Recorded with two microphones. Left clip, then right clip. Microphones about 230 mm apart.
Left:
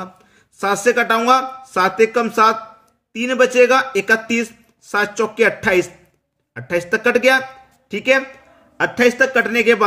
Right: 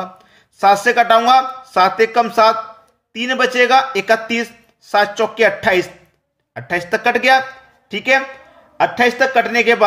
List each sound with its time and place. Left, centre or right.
0.6 s speech: left